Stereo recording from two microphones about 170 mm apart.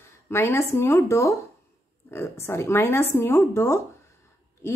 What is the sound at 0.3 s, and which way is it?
Speech, 15° left (ahead or behind).